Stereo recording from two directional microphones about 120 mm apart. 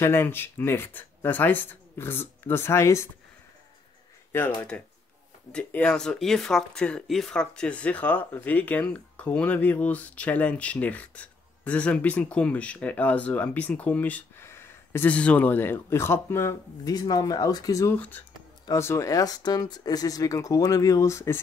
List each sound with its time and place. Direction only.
0.0 s speech: 20° left (ahead or behind)
4.6 s speech: 10° left (ahead or behind); by 17.9 s 30° left (ahead or behind)
17.9 s speech: 15° left (ahead or behind)
18.7 s speech: 25° left (ahead or behind)